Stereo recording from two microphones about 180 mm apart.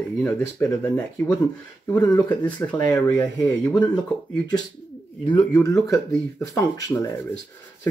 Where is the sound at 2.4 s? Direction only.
10° left (ahead or behind).